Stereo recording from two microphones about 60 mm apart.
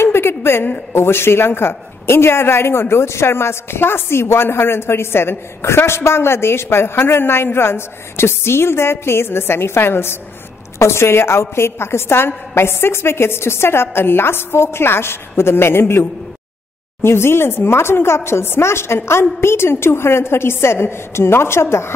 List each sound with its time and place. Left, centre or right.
0.0 s a woman's voice: left